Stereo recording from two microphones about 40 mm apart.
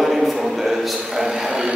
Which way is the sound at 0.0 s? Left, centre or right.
Centre.